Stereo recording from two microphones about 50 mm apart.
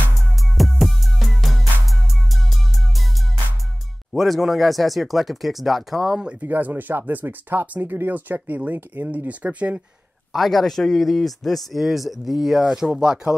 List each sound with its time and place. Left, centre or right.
0.6 s music: centre
4.1 s speech: centre
6.4 s speech: right
9.3 s speech: right
10.3 s speech: centre